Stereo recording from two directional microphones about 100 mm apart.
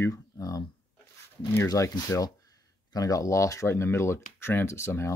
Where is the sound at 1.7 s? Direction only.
35° left (ahead or behind).